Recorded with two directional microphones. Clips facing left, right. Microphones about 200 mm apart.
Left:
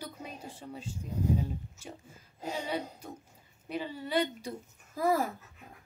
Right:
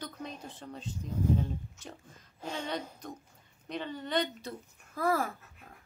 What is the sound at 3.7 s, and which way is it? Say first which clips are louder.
A woman's voice: left 1 dB; 5° left (ahead or behind).